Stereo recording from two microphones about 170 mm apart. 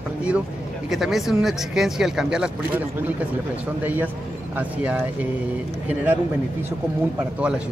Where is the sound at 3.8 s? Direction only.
10° right (ahead or behind).